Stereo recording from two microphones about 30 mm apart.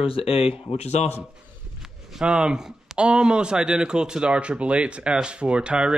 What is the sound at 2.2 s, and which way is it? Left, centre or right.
Speech, right.